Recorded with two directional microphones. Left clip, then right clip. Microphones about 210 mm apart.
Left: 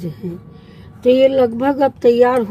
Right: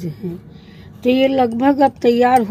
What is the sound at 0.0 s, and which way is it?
Speech, 10° right (ahead or behind).